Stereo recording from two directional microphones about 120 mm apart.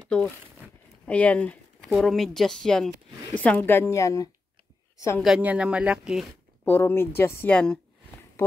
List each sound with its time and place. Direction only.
0.0 s a woman's voice: 10° left (ahead or behind); by 5.2 s 25° left (ahead or behind)
5.4 s speech: 10° right (ahead or behind)
6.6 s a woman's voice: 20° left (ahead or behind)
7.5 s speech: 5° left (ahead or behind)